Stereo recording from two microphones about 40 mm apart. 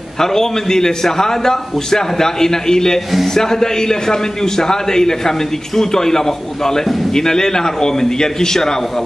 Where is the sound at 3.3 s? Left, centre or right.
Centre.